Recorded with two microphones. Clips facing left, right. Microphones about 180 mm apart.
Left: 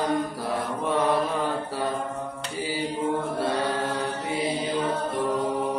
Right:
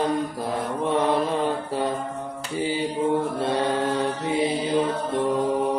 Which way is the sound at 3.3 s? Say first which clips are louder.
Right 2 dB; 25° right (ahead or behind).